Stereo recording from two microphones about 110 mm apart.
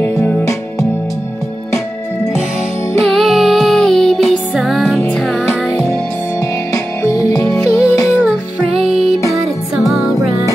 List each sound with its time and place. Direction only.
0.0 s music: 20° left (ahead or behind)
3.0 s music: centre (ahead or behind)
7.0 s music: 30° left (ahead or behind)
8.7 s music: 5° right (ahead or behind)